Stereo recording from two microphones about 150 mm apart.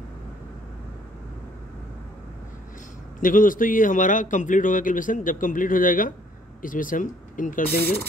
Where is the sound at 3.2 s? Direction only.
65° left (ahead or behind); by 8.0 s 85° left.